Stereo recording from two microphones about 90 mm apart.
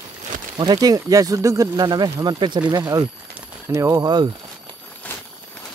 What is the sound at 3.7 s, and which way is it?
Speech, 35° right (ahead or behind).